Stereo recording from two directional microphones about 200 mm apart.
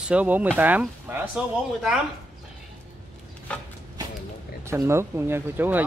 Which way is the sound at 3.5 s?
5° left (ahead or behind).